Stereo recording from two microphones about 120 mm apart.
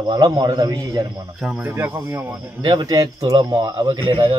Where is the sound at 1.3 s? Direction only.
5° right (ahead or behind).